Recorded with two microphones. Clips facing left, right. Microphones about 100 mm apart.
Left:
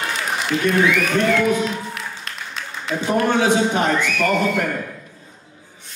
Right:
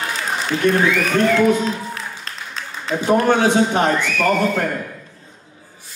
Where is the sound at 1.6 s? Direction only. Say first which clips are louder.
Right 1 dB; 35° right (ahead or behind).